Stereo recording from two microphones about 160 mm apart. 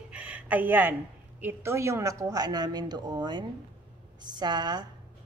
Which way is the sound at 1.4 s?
15° right (ahead or behind).